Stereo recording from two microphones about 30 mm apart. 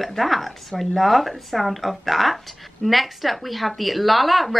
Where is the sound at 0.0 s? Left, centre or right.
Centre.